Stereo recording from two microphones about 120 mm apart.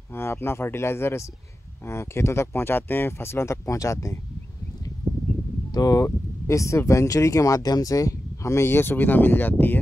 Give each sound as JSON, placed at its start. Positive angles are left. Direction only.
{"t": 0.1, "sound": "speech", "side_deg": 20}
{"t": 5.7, "sound": "speech", "side_deg": 35}